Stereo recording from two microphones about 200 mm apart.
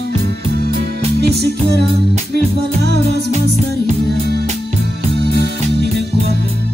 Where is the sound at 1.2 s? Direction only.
55° right (ahead or behind).